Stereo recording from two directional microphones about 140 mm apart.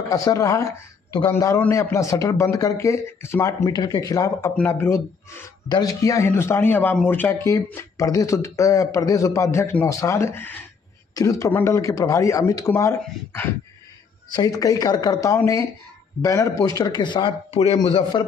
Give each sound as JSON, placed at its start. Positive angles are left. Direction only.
{"t": 0.1, "sound": "speech", "side_deg": 25}
{"t": 4.6, "sound": "a man's voice", "side_deg": 15}